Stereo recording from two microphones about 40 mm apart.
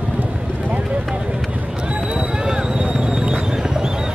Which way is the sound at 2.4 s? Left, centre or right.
Right.